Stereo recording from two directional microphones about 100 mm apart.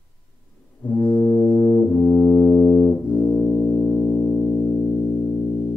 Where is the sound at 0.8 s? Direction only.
15° left (ahead or behind).